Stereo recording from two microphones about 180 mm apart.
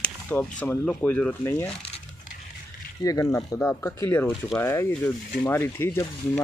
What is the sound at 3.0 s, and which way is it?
Speech, 20° left (ahead or behind).